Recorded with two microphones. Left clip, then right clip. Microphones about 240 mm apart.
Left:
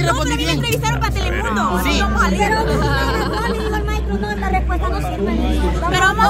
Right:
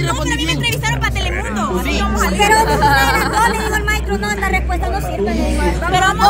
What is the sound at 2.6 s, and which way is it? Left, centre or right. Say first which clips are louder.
Speech: right 6 dB; centre.